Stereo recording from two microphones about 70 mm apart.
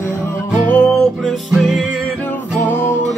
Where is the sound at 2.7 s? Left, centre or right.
Left.